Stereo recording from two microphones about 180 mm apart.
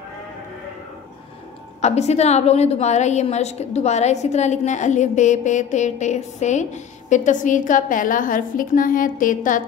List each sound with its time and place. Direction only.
1.8 s a woman's voice: 40° left (ahead or behind)